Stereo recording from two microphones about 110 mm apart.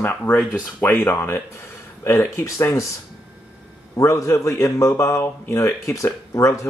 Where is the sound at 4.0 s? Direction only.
30° left (ahead or behind).